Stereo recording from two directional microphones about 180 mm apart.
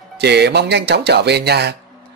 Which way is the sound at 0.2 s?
65° right (ahead or behind).